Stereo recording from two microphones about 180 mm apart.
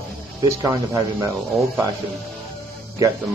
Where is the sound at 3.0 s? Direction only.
20° right (ahead or behind).